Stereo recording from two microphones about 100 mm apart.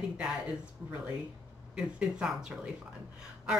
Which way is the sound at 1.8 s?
10° right (ahead or behind).